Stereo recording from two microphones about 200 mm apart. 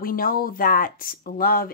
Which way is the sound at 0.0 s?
45° left (ahead or behind).